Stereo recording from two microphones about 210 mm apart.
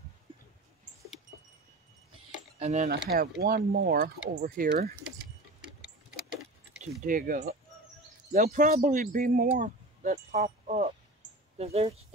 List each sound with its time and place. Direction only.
2.6 s speech: 35° right (ahead or behind)
3.1 s speech: 45° right (ahead or behind)
6.8 s speech: 40° right (ahead or behind)